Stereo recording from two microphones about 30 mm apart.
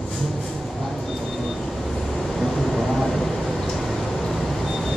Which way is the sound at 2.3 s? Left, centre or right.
Centre.